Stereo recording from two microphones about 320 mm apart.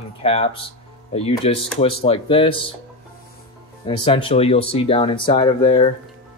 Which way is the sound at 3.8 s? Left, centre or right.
Centre.